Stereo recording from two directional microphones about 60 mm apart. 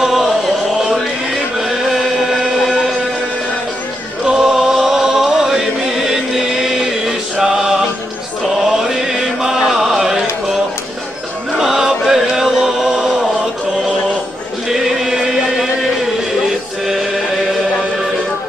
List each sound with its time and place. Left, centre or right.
1.6 s chant: centre
2.6 s a sound: centre
4.3 s chant: centre
11.5 s chant: centre
14.7 s chant: centre